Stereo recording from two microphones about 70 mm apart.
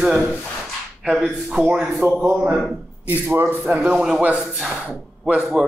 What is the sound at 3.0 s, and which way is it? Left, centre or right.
Speech, right.